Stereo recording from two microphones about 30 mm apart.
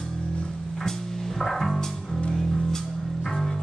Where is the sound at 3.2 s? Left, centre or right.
Centre.